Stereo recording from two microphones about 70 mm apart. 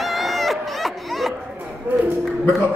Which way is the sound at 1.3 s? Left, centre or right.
Right.